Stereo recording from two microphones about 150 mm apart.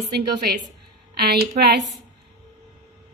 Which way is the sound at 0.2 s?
90° right.